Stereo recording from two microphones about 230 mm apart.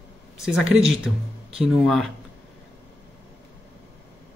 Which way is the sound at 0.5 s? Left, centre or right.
Centre.